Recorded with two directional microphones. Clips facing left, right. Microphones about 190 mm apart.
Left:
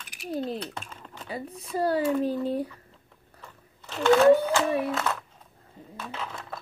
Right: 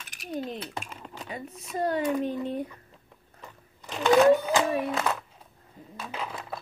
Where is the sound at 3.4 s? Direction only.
15° right (ahead or behind).